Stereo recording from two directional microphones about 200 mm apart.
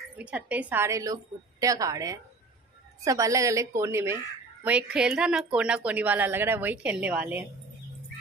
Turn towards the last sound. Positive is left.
turn(degrees=-5)  # may be behind; listen again after turning